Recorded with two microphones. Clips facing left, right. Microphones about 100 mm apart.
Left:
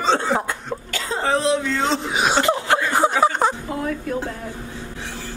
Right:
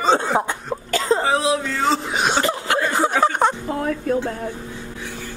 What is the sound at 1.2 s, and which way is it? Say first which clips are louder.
Speech: even; centre (ahead or behind).